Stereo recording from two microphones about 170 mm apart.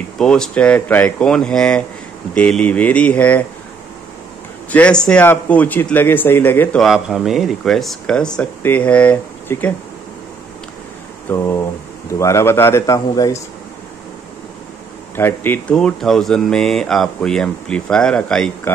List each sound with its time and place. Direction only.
0.2 s speech: 5° left (ahead or behind)
4.6 s speech: 10° left (ahead or behind)
6.8 s speech: centre (ahead or behind)
11.2 s speech: 15° left (ahead or behind)
15.1 s speech: 10° left (ahead or behind)